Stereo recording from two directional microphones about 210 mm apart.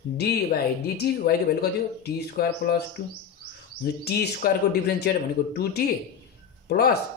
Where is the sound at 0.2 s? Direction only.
50° left (ahead or behind).